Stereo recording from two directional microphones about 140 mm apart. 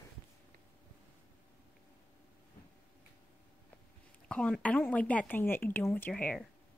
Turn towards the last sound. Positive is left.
turn(degrees=10)  # may be behind; listen again after turning